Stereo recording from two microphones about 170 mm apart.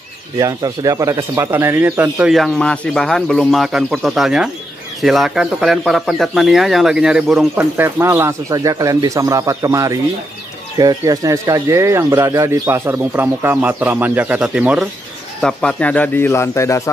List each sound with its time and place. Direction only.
0.4 s speech: 25° right (ahead or behind)
2.3 s speech: 5° left (ahead or behind)
15.4 s speech: 5° left (ahead or behind)